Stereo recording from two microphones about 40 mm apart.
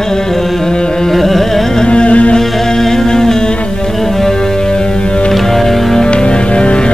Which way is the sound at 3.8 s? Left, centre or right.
Centre.